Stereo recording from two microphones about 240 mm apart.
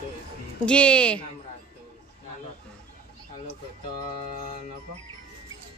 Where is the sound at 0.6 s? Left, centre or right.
Centre.